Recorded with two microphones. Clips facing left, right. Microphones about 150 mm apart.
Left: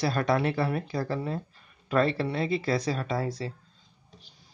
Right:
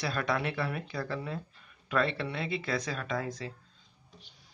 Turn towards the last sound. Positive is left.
turn(degrees=35)  # may be behind; listen again after turning